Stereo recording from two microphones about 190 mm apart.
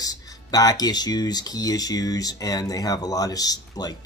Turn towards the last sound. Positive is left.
turn(degrees=20)  # may be behind; listen again after turning